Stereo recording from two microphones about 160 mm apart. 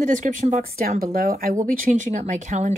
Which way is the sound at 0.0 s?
50° right (ahead or behind).